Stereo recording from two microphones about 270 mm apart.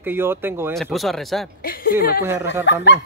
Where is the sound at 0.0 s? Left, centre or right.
Centre.